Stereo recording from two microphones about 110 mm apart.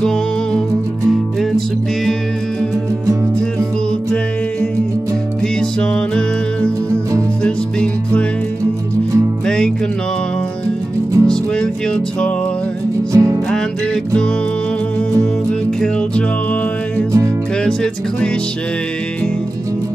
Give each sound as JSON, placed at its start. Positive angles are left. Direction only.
{"t": 5.6, "sound": "music", "side_deg": 10}
{"t": 11.2, "sound": "music", "side_deg": 10}
{"t": 13.1, "sound": "music", "side_deg": -30}